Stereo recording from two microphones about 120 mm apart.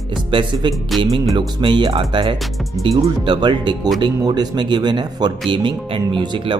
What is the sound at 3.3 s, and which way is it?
Speech, 40° right (ahead or behind).